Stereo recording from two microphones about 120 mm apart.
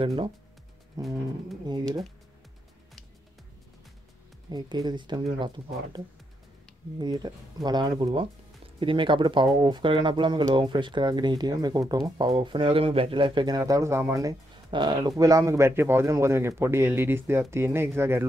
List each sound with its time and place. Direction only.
0.0 s speech: 50° right (ahead or behind)
1.0 s speech: 30° right (ahead or behind)
4.5 s speech: 35° right (ahead or behind)
7.0 s speech: 35° right (ahead or behind)
13.6 s speech: 25° right (ahead or behind)
14.7 s speech: 40° right (ahead or behind); by 18.2 s 20° right (ahead or behind)